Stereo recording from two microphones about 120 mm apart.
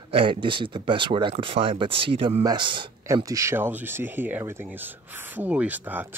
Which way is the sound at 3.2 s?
25° right (ahead or behind).